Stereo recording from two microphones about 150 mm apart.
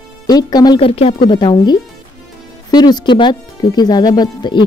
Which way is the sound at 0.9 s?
40° left (ahead or behind).